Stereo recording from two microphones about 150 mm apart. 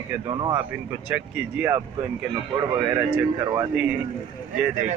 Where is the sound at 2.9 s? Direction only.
20° right (ahead or behind).